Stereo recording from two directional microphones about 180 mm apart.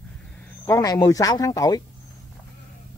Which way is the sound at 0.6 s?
20° left (ahead or behind).